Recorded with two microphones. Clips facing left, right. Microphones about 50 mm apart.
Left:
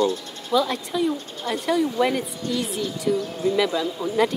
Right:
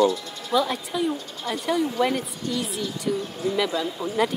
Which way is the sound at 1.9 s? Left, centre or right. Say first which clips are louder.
Left 1 dB; centre.